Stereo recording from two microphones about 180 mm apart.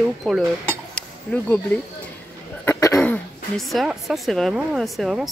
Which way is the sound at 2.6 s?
20° left (ahead or behind).